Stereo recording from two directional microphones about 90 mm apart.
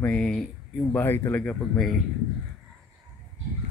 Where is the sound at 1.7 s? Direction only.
Centre (ahead or behind).